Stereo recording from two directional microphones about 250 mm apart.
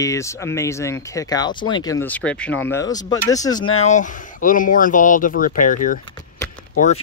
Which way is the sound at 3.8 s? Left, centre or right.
Left.